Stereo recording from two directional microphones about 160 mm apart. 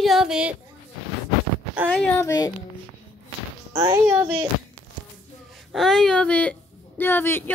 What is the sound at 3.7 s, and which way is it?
Speech, 20° right (ahead or behind).